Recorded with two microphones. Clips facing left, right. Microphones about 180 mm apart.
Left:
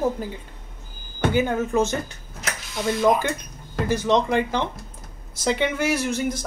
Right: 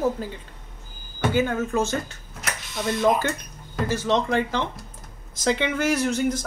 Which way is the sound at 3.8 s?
15° left (ahead or behind).